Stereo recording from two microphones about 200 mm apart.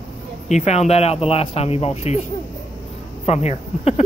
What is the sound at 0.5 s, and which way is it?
Speech, 35° left (ahead or behind).